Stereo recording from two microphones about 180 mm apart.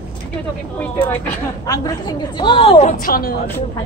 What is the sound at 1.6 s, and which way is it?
A woman's voice, 20° left (ahead or behind).